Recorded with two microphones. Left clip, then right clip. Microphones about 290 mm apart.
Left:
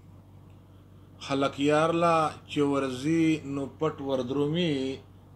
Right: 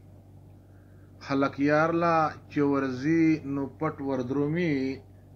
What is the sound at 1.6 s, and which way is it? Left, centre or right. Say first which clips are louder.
A man's voice: left 1 dB; centre.